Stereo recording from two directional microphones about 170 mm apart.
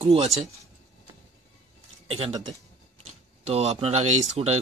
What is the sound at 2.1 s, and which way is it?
Speech, 30° right (ahead or behind).